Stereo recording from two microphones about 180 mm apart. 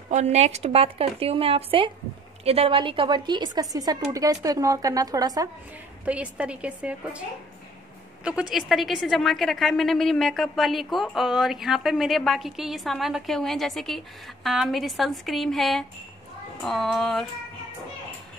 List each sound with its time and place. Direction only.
0.1 s a woman's voice: 40° right (ahead or behind); by 5.5 s 20° right (ahead or behind)
6.0 s a woman's voice: 5° right (ahead or behind)